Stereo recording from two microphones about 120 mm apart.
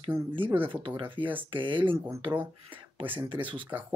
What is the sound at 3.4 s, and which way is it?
Speech, 15° right (ahead or behind).